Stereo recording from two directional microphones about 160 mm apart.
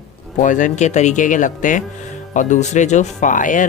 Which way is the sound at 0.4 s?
50° left (ahead or behind).